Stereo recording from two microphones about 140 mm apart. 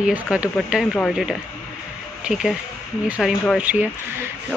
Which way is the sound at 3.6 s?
10° right (ahead or behind).